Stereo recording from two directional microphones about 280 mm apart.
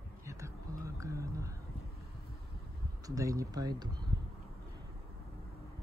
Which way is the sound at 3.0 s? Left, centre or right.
Centre.